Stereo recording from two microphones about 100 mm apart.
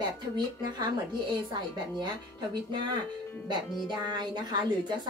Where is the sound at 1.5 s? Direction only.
45° right (ahead or behind).